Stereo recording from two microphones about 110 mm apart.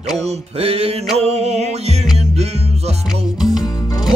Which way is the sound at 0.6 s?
65° right (ahead or behind).